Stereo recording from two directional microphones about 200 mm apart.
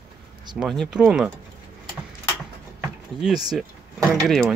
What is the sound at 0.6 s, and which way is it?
Speech, centre (ahead or behind).